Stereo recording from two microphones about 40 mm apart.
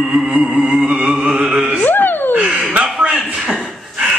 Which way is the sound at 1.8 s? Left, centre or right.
Left.